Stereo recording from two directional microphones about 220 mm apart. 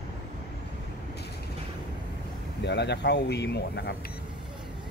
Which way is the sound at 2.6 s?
50° left (ahead or behind).